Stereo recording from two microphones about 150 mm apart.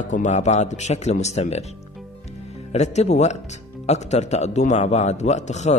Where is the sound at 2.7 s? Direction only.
50° left (ahead or behind).